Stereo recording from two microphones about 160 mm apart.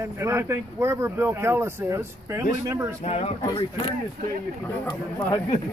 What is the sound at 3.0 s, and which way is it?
Speech, 40° left (ahead or behind).